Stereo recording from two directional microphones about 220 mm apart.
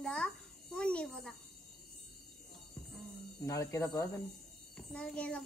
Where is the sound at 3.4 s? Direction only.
15° left (ahead or behind).